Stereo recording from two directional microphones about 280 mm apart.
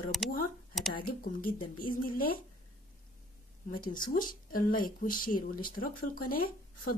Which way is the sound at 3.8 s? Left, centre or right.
Left.